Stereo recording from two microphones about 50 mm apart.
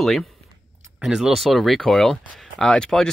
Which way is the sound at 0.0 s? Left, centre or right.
Centre.